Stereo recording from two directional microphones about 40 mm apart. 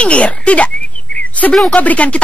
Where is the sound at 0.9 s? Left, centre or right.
Left.